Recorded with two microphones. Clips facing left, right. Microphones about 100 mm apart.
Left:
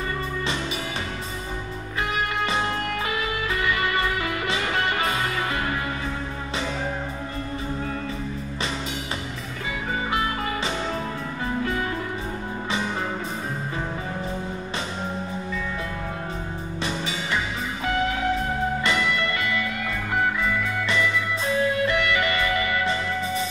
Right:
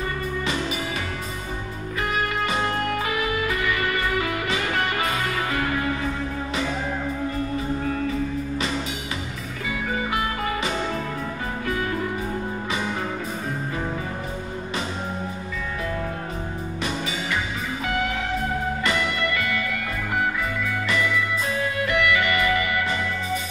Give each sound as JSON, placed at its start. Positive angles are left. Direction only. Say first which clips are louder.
{"t": 2.7, "sound": "music", "louder": "right 3 dB", "side_deg": -40}
{"t": 3.2, "sound": "music", "louder": "right 2 dB", "side_deg": 30}
{"t": 18.9, "sound": "music", "louder": "even", "side_deg": 30}
{"t": 20.8, "sound": "music", "louder": "right 2 dB", "side_deg": 30}